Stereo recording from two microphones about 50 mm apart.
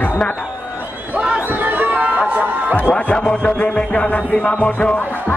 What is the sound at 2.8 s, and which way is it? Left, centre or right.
Music, left.